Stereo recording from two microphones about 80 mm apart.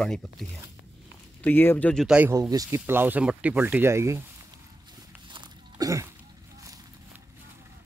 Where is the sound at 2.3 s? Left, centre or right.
Right.